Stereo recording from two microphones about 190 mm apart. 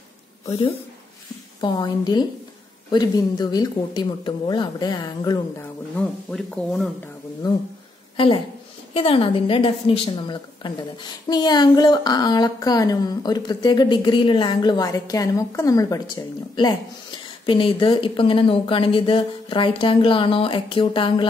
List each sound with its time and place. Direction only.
0.5 s a woman's voice: 30° left (ahead or behind)
5.9 s speech: 5° left (ahead or behind)
8.9 s a woman's voice: 30° left (ahead or behind)